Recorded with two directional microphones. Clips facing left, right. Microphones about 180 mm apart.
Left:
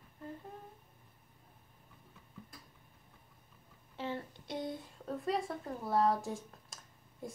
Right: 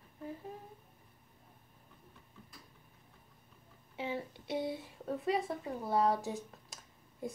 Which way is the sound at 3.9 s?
10° right (ahead or behind).